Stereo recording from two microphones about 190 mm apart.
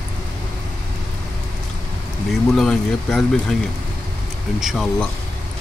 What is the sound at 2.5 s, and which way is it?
Speech, centre (ahead or behind).